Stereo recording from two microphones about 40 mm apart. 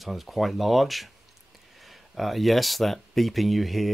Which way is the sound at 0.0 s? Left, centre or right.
Centre.